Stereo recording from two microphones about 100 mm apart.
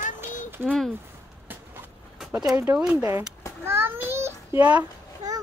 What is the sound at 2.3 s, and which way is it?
Speech, 5° right (ahead or behind).